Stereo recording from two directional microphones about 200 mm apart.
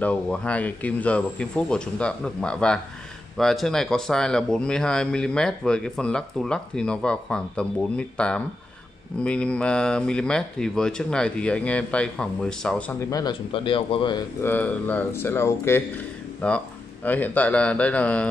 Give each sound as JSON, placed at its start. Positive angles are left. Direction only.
{"t": 0.0, "sound": "speech", "side_deg": 5}
{"t": 13.1, "sound": "speech", "side_deg": 20}
{"t": 14.4, "sound": "speech", "side_deg": 10}